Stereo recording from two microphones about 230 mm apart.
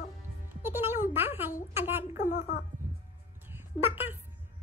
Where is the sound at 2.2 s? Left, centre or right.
Left.